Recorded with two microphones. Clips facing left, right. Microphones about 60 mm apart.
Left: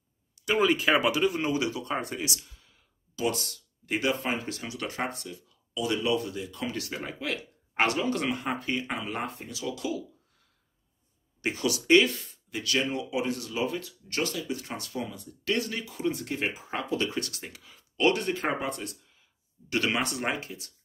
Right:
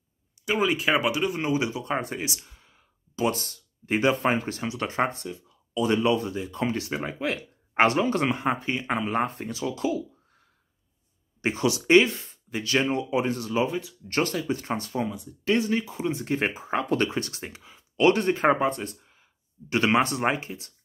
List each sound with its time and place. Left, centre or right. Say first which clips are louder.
0.5 s speech: even; centre
1.5 s speech: right 3 dB; right
11.4 s speech: right 3 dB; right
16.8 s speech: right 4 dB; right
17.1 s speech: right 3 dB; right